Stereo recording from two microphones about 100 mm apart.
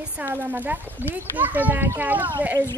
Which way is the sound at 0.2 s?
20° right (ahead or behind).